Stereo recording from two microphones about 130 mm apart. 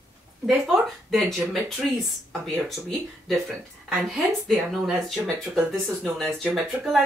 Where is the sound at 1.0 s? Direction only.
Centre (ahead or behind).